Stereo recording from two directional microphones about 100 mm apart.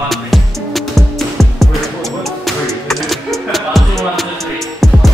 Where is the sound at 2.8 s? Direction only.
Centre (ahead or behind).